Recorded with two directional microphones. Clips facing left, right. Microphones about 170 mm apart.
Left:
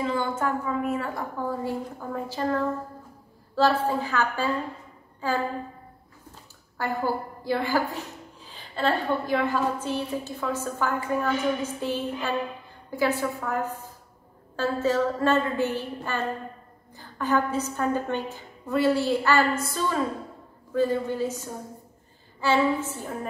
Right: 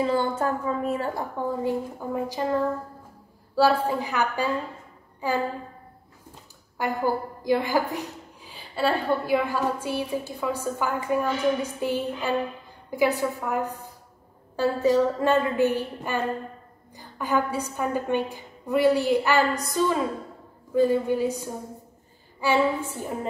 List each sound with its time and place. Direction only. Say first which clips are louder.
0.0 s a woman's voice: right 3 dB; 35° right (ahead or behind)
1.5 s a woman's voice: right 3 dB; 20° right (ahead or behind)
6.8 s a woman's voice: right 2 dB; 15° right (ahead or behind)